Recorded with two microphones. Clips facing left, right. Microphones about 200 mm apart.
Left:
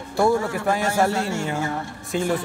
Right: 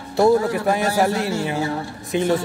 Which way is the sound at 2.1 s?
20° right (ahead or behind).